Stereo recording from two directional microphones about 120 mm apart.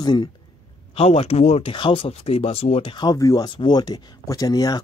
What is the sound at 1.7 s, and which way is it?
Speech, 45° left (ahead or behind).